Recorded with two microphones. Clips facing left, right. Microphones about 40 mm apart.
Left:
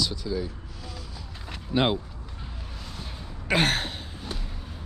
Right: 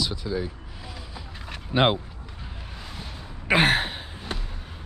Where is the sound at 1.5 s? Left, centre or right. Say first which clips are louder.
Right 3 dB; right.